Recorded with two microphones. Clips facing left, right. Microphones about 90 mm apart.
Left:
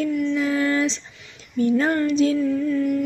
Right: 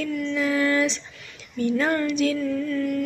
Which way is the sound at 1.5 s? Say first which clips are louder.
Left 3 dB; 30° left (ahead or behind).